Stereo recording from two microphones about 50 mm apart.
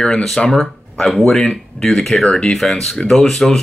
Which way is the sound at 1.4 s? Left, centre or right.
Centre.